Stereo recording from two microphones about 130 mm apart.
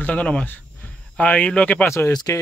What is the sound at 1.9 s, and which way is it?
Speech, 25° left (ahead or behind).